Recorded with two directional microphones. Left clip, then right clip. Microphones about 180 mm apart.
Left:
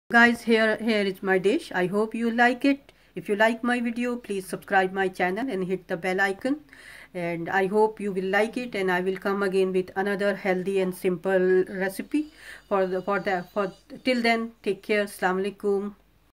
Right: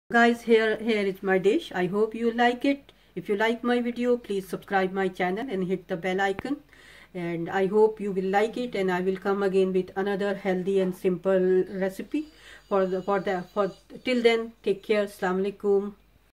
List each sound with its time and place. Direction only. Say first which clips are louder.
1.0 s speech: right 2 dB; 35° left (ahead or behind)